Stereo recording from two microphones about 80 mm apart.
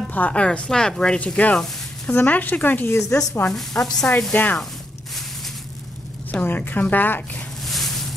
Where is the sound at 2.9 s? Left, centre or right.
Left.